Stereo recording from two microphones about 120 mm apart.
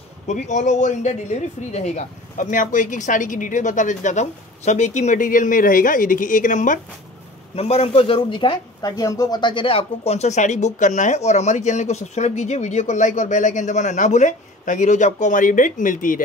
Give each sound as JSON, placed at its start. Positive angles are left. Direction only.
{"t": 0.3, "sound": "speech", "side_deg": 85}
{"t": 7.5, "sound": "speech", "side_deg": 55}
{"t": 9.4, "sound": "speech", "side_deg": 40}